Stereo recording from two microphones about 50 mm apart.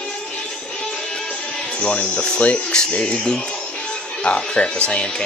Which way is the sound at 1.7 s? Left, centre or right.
Left.